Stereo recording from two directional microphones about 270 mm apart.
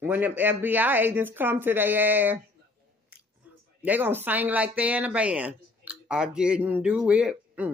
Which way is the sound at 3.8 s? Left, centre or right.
Centre.